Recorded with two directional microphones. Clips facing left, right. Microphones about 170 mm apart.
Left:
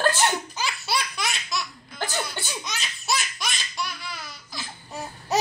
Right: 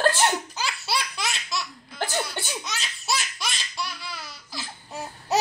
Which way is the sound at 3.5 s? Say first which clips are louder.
Left 1 dB; 30° right (ahead or behind).